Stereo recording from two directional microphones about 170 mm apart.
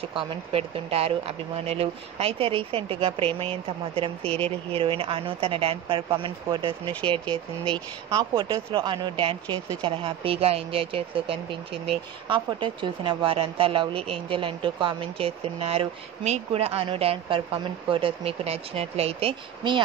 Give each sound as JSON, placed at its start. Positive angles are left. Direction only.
{"t": 0.0, "sound": "speech", "side_deg": -35}